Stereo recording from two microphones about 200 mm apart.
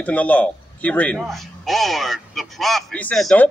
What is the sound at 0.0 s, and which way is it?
A man's voice, 5° left (ahead or behind).